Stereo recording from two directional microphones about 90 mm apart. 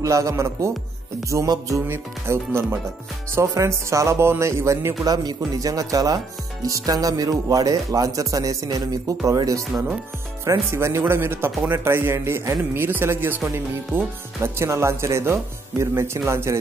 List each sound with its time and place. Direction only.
0.0 s speech: 35° right (ahead or behind)
1.9 s a man's voice: 30° right (ahead or behind)
5.0 s a man's voice: 45° right (ahead or behind)